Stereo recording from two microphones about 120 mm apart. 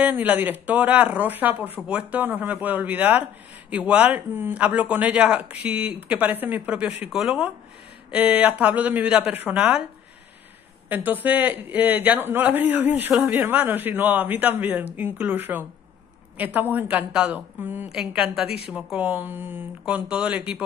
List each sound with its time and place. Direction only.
0.0 s a man's voice: 15° right (ahead or behind)
11.1 s a man's voice: 15° right (ahead or behind)